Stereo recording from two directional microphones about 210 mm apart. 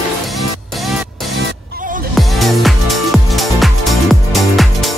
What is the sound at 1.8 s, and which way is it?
Music, 40° right (ahead or behind).